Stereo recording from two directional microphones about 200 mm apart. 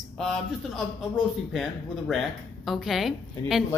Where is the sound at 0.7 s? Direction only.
Centre (ahead or behind).